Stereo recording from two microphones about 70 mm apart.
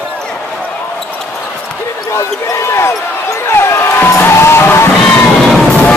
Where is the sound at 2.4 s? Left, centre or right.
Left.